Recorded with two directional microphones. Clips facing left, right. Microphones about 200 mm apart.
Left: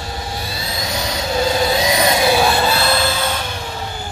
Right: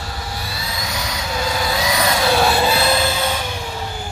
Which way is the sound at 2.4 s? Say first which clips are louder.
Even; 5° right (ahead or behind).